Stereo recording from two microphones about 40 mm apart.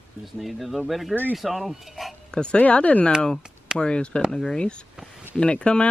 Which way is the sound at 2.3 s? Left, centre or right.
Left.